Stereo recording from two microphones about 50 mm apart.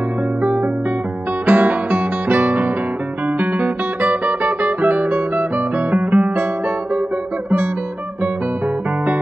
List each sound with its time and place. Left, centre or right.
0.4 s music: right
1.4 s guitar: right